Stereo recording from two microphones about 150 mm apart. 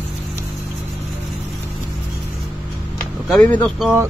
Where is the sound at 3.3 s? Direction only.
10° left (ahead or behind).